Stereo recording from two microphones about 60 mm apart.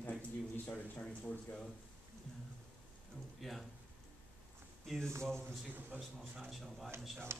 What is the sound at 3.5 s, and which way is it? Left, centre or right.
Speech, centre.